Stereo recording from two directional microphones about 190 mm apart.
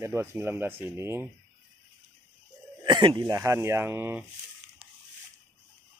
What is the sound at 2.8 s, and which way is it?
Speech, 25° right (ahead or behind).